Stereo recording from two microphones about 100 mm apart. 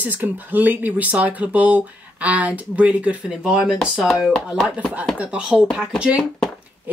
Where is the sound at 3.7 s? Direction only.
10° left (ahead or behind).